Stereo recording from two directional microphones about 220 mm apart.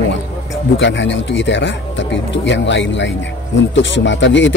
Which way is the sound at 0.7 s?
55° left (ahead or behind).